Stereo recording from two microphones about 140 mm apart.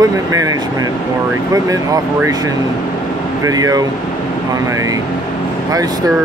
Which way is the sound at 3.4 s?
25° right (ahead or behind).